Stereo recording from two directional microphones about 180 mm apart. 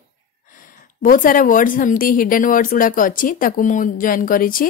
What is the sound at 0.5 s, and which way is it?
A woman's voice, 50° left (ahead or behind).